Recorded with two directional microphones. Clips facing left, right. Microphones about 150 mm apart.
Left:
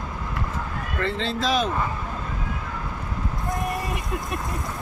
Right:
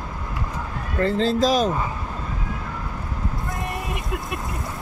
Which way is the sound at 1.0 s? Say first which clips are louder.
Right 7 dB; 40° right (ahead or behind).